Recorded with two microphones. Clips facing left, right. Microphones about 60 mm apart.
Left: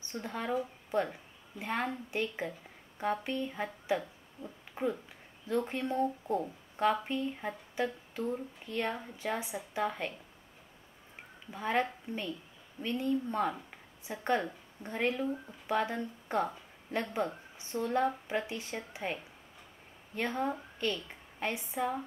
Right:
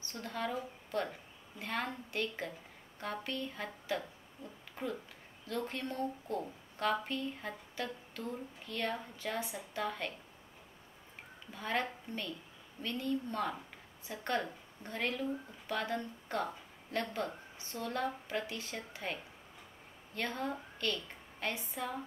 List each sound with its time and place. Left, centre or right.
0.1 s speech: centre
11.5 s speech: centre
20.2 s a woman's voice: centre